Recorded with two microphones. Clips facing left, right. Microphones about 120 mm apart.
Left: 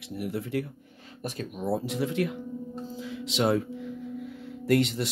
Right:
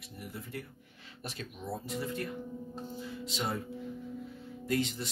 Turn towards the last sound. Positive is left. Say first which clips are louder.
# left 8 dB
turn(degrees=70)  # may be behind; listen again after turning